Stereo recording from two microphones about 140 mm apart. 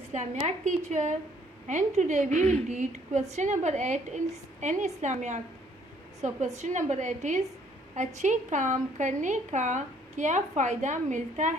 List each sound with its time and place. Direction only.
0.1 s a woman's voice: 55° right (ahead or behind)